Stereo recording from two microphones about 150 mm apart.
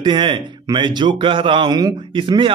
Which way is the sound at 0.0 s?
30° right (ahead or behind).